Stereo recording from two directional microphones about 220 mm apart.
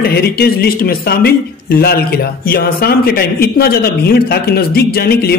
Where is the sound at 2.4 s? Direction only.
45° left (ahead or behind).